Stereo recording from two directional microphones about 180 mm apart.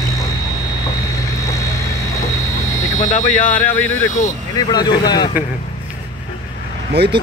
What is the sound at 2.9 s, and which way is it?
Speech, 40° left (ahead or behind).